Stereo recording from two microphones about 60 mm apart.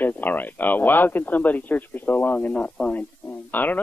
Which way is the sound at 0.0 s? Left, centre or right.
Left.